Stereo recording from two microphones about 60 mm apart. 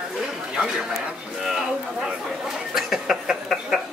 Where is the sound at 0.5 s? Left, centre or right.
Centre.